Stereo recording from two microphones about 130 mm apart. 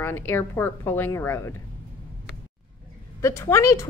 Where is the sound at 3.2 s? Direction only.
20° left (ahead or behind).